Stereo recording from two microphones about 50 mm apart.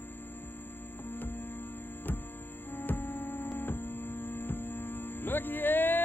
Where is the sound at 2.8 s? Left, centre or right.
Left.